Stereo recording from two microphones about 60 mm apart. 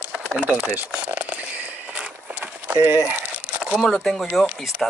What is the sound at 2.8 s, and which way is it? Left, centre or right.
Speech, right.